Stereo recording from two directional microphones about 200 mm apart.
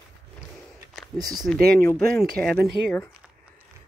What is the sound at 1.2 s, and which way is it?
Speech, 20° right (ahead or behind).